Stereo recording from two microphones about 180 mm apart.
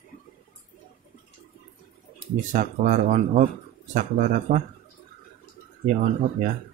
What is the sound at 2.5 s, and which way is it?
Speech, 45° right (ahead or behind).